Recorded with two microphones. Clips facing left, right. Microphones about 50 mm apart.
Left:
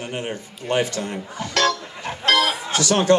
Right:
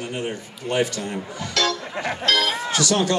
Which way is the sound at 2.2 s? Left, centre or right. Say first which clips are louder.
Left 3 dB; left.